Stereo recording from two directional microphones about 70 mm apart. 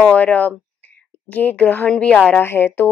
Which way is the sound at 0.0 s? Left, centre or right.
Left.